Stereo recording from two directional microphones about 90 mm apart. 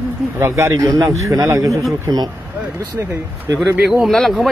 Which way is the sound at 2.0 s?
50° right (ahead or behind).